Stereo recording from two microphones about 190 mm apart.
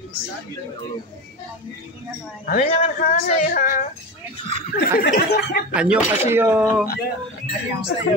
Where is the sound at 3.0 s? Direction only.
45° left (ahead or behind).